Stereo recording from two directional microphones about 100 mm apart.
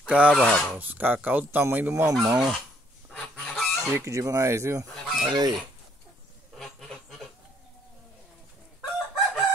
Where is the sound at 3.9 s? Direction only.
30° right (ahead or behind).